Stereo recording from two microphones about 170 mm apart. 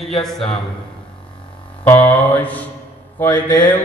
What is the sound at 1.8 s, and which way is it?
A man's voice, 10° left (ahead or behind).